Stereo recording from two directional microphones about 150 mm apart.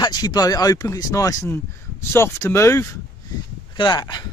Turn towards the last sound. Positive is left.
turn(degrees=30)  # may be behind; listen again after turning